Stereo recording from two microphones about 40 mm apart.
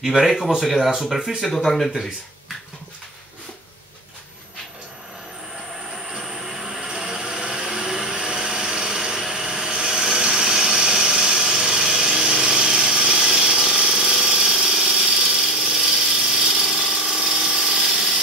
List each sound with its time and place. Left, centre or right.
0.2 s speech: centre
1.4 s speech: centre
5.9 s a sound: centre
8.4 s wood: centre
9.9 s tools: centre
10.8 s power tool: centre
17.0 s tools: centre
17.6 s power tool: centre